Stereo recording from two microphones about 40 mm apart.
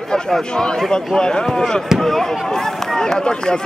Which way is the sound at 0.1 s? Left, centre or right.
Centre.